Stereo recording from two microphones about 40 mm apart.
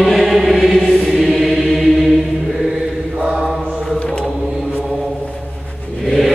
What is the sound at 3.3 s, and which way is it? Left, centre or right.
Mantra, centre.